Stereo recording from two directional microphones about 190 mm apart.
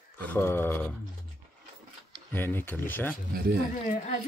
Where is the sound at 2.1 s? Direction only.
10° left (ahead or behind).